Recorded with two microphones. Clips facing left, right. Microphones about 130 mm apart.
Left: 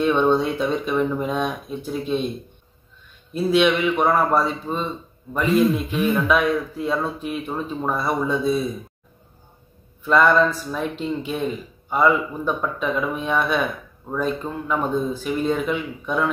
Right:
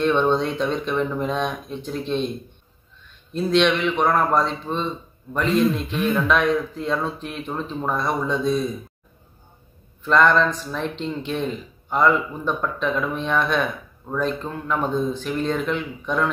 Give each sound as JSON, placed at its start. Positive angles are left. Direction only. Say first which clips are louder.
{"t": 0.0, "sound": "a man's voice", "louder": "left 1 dB", "side_deg": 10}
{"t": 3.3, "sound": "a man's voice", "louder": "left 1 dB", "side_deg": 5}
{"t": 10.0, "sound": "a man's voice", "louder": "left 1 dB", "side_deg": 5}